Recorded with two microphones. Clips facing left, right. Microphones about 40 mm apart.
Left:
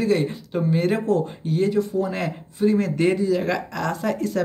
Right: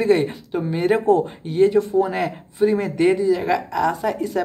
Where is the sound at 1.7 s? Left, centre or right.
Right.